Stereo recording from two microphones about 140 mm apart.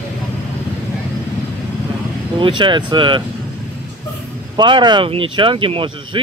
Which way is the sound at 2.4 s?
35° right (ahead or behind).